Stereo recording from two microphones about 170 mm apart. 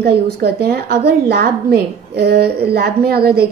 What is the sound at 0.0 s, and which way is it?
A woman's voice, 70° right (ahead or behind).